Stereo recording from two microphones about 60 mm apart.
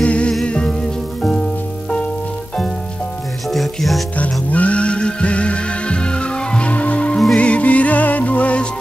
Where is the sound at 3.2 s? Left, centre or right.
Centre.